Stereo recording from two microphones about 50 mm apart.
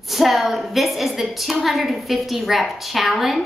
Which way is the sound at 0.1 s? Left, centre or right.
Centre.